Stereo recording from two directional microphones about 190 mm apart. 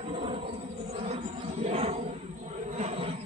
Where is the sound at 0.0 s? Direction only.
30° right (ahead or behind).